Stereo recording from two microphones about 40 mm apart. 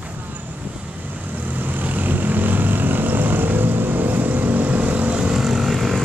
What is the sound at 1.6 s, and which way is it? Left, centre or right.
Vehicle, right.